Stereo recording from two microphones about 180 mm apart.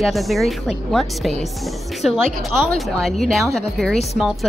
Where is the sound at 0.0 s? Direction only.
Centre (ahead or behind).